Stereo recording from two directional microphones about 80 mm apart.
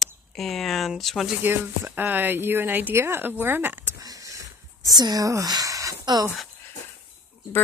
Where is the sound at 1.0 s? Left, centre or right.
Centre.